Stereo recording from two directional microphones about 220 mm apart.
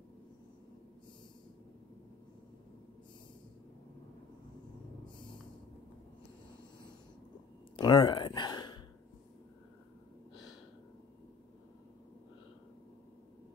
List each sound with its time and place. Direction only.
7.7 s gasp: 20° left (ahead or behind)